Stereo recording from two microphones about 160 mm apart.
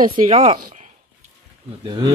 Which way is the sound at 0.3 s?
35° right (ahead or behind).